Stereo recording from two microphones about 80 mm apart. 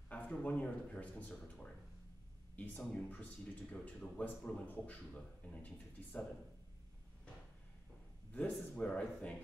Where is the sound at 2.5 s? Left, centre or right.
Left.